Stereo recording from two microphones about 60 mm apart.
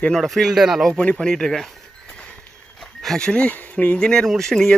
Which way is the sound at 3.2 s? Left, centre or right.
Centre.